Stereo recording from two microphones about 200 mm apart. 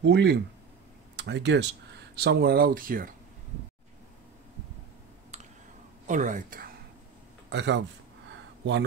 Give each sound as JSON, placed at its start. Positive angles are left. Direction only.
{"t": 0.0, "sound": "speech", "side_deg": -60}
{"t": 5.3, "sound": "clicking", "side_deg": -35}
{"t": 6.0, "sound": "a woman's voice", "side_deg": -40}
{"t": 7.4, "sound": "speech", "side_deg": -60}
{"t": 8.3, "sound": "a sound", "side_deg": -60}